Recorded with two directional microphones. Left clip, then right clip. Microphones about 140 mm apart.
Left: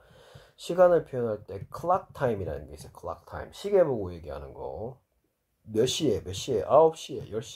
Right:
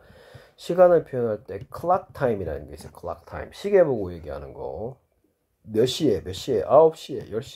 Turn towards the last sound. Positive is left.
turn(degrees=-20)  # may be behind; listen again after turning